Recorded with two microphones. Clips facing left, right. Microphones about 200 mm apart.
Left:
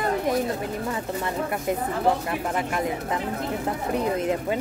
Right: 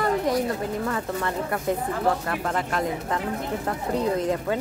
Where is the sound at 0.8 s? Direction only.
15° left (ahead or behind).